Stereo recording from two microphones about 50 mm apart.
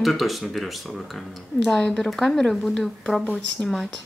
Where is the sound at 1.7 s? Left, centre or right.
Centre.